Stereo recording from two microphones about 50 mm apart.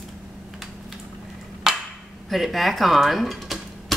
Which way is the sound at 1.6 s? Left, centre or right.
Centre.